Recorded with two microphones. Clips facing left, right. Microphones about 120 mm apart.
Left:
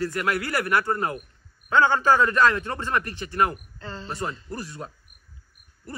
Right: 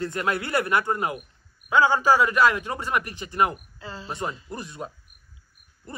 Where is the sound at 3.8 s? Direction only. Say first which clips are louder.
Left 1 dB; 5° right (ahead or behind).